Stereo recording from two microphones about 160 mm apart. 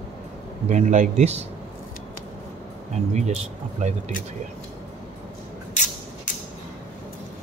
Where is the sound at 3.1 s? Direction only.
45° right (ahead or behind).